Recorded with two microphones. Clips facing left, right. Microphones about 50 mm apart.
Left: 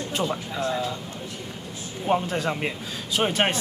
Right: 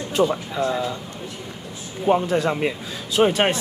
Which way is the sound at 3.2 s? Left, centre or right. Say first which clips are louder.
Right 8 dB; right.